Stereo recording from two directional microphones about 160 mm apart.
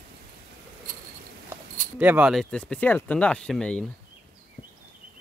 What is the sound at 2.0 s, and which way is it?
Speech, 10° right (ahead or behind).